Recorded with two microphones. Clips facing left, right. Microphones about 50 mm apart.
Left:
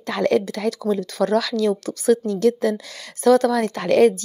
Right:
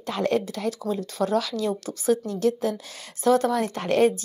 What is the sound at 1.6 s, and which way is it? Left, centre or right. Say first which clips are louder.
A woman's voice: left 5 dB; left.